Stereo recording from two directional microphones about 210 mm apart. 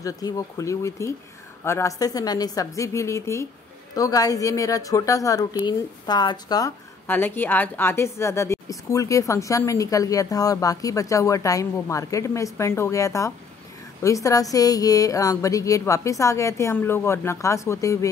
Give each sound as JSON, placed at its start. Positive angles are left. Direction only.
{"t": 0.0, "sound": "speech", "side_deg": 15}